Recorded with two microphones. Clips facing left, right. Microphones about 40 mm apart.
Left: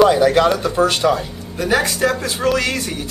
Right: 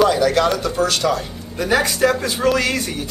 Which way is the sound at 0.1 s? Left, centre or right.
Centre.